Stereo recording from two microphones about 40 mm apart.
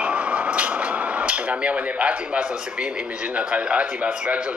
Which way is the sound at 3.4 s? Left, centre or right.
Right.